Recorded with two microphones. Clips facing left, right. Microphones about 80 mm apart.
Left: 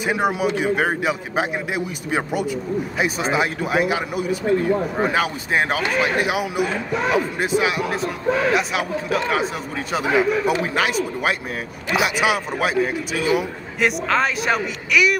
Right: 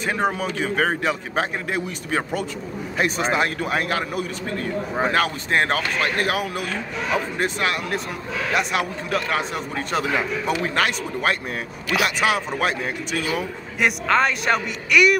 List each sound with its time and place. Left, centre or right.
0.0 s a man's voice: centre
13.2 s a man's voice: centre
13.7 s a man's voice: centre